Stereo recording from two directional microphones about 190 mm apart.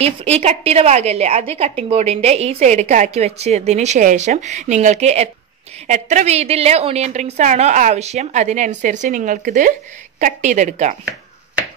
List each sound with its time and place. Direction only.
0.0 s a woman's voice: 30° right (ahead or behind)